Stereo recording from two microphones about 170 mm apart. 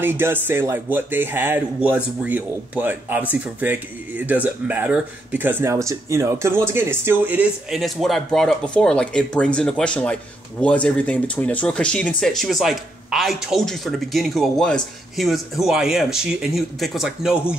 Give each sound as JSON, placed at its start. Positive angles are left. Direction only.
{"t": 0.0, "sound": "speech", "side_deg": -10}